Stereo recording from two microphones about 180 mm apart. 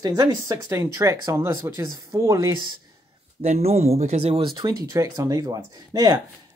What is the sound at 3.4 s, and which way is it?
Speech, 35° right (ahead or behind).